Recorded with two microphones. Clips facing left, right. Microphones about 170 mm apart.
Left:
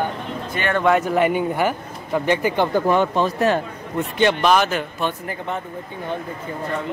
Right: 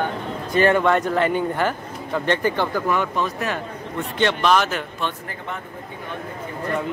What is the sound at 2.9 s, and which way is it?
Speech, 30° left (ahead or behind).